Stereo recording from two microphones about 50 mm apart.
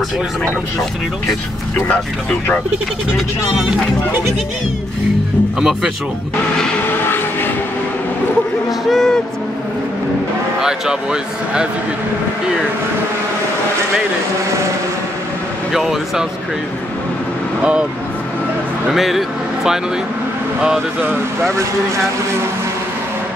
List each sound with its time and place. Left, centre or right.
5.6 s speech: centre
8.8 s speech: centre
10.6 s speech: centre
15.7 s speech: centre
18.9 s speech: centre
21.5 s speech: right